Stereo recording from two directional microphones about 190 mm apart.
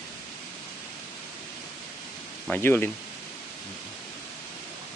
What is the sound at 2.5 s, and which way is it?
Speech, 10° left (ahead or behind).